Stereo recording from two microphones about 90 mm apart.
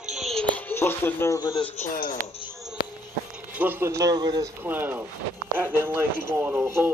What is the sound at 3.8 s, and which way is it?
Speech, 35° right (ahead or behind).